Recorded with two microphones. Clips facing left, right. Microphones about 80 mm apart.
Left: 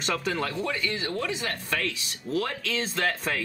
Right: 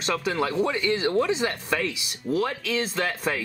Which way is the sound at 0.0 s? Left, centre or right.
Centre.